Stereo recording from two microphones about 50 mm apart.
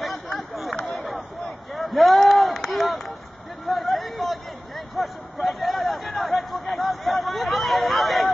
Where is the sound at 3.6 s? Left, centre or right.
Centre.